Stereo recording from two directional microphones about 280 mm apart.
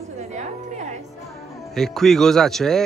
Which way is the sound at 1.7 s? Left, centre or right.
Centre.